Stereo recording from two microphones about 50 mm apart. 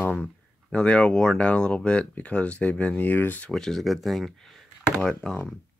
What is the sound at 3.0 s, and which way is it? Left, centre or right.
Speech, left.